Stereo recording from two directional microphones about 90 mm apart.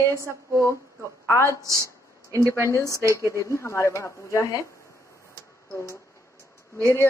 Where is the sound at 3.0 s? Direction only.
35° right (ahead or behind).